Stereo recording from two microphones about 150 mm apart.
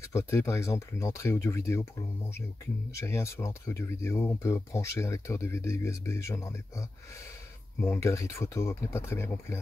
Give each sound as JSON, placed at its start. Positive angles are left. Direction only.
{"t": 0.1, "sound": "speech", "side_deg": 20}